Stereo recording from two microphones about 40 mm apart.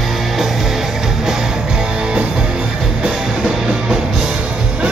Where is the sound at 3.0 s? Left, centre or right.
Centre.